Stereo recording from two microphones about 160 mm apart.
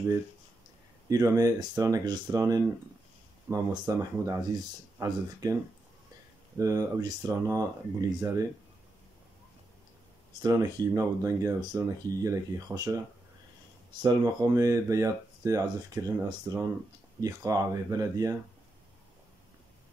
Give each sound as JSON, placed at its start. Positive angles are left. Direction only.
{"t": 1.0, "sound": "speech", "side_deg": -20}
{"t": 6.6, "sound": "speech", "side_deg": -20}
{"t": 10.4, "sound": "speech", "side_deg": -25}
{"t": 14.0, "sound": "speech", "side_deg": -25}